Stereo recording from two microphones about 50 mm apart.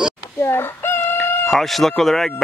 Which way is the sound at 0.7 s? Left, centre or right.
Left.